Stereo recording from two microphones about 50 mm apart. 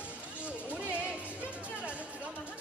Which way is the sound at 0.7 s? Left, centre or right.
Right.